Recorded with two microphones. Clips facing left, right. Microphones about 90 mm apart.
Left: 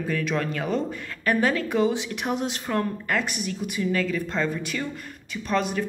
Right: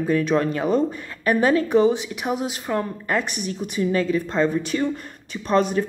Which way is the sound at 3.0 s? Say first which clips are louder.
Right 3 dB; 30° right (ahead or behind).